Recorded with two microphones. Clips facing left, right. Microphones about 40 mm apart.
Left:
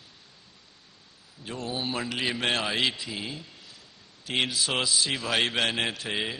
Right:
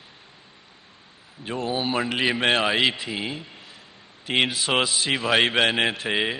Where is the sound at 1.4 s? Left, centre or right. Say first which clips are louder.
Right 6 dB; right.